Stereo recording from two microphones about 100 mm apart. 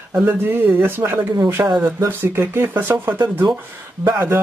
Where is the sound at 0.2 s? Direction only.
20° right (ahead or behind).